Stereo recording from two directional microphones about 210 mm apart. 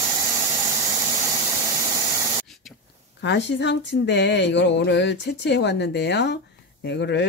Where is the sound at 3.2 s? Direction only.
55° left (ahead or behind).